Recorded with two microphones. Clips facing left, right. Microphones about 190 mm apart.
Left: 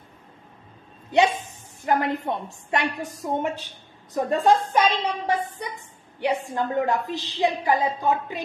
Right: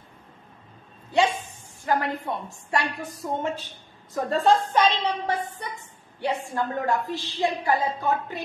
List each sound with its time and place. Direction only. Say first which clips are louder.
1.9 s a woman's voice: left 2 dB; 20° left (ahead or behind)